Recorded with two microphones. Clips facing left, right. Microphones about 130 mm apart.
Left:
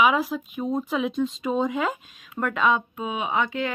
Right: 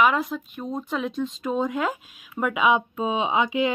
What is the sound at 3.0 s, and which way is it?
Speech, 25° right (ahead or behind).